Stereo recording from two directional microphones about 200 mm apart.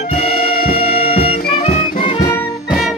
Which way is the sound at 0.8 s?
30° left (ahead or behind).